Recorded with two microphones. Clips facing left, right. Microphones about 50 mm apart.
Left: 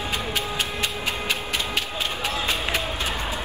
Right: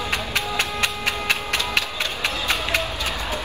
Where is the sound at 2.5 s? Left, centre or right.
Right.